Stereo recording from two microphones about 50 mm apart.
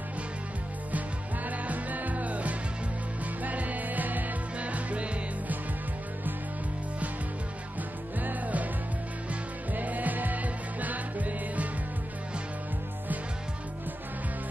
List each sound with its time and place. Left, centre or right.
0.9 s music: right
8.2 s music: right